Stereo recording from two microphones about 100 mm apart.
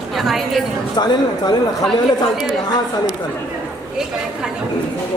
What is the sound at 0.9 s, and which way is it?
Speech, 45° left (ahead or behind).